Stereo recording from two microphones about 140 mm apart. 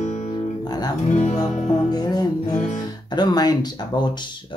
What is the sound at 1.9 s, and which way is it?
Music, 30° left (ahead or behind).